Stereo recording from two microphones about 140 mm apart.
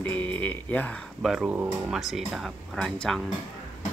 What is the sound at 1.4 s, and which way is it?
Speech, 15° right (ahead or behind).